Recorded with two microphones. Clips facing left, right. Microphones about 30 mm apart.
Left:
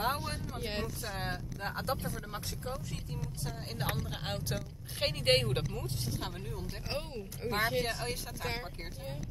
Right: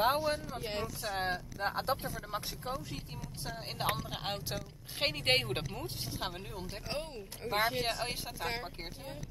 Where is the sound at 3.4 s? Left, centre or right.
Centre.